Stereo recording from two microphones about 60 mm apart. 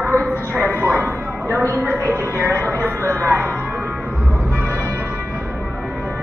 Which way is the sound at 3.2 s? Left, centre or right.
Right.